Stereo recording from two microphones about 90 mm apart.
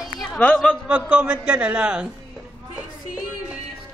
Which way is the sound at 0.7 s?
15° right (ahead or behind).